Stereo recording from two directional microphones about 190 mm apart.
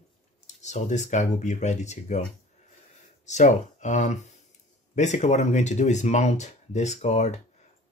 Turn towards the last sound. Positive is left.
turn(degrees=35)  # may be behind; listen again after turning